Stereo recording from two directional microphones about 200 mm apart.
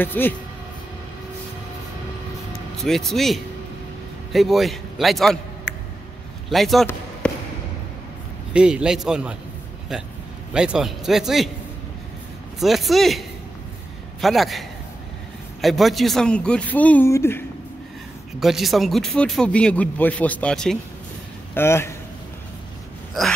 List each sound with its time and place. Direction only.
0.0 s speech: 10° left (ahead or behind)
2.8 s speech: centre (ahead or behind)
5.7 s a sound: 65° left (ahead or behind)
6.5 s speech: centre (ahead or behind)
7.2 s basketball bounce: 5° left (ahead or behind)
8.5 s speech: 5° right (ahead or behind)
10.5 s speech: 5° right (ahead or behind)
12.5 s speech: centre (ahead or behind)
14.2 s speech: centre (ahead or behind)
18.4 s speech: centre (ahead or behind)